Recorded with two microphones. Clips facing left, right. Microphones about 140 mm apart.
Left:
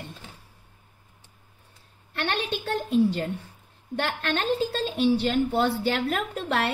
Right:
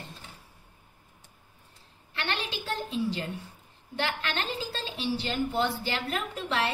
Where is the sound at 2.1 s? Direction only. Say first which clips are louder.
Left 5 dB; 55° left (ahead or behind).